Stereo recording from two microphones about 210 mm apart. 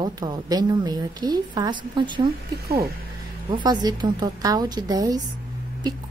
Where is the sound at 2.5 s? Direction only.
50° right (ahead or behind).